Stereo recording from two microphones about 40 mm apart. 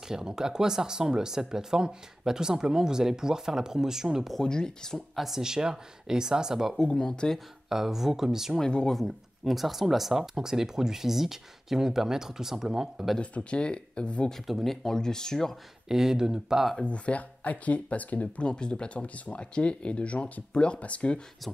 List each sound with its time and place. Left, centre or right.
0.1 s speech: centre
4.4 s speech: centre
5.1 s speech: centre
5.4 s speech: centre
6.8 s speech: centre
7.7 s speech: centre
8.6 s speech: left
8.9 s speech: centre
13.2 s speech: left
14.5 s speech: centre
15.9 s speech: centre
16.8 s speech: left
18.4 s speech: left